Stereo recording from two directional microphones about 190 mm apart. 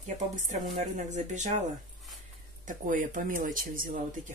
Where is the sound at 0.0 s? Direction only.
40° right (ahead or behind).